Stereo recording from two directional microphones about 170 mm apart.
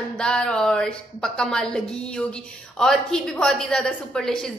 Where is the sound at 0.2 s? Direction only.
5° left (ahead or behind).